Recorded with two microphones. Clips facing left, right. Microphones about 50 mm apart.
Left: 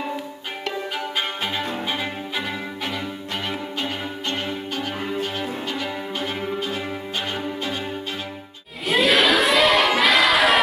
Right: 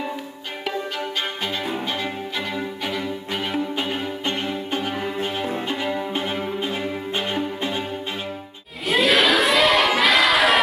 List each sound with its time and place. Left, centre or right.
0.9 s violin: centre
1.6 s music: centre
3.7 s music: centre
8.8 s crowd: centre